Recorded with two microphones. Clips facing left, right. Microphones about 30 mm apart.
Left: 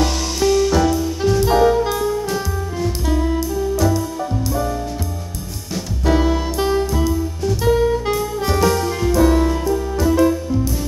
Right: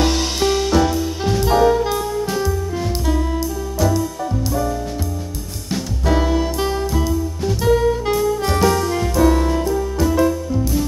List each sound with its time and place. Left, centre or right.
0.0 s music: right
0.7 s music: centre
1.4 s saxophone: centre
3.1 s music: centre
6.0 s music: centre
7.6 s saxophone: centre